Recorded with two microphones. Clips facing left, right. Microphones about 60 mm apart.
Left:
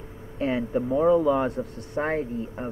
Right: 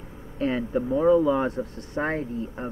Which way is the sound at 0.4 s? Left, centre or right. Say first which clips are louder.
Even; left.